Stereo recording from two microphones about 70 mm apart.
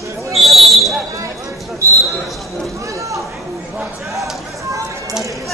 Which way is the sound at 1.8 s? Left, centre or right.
Right.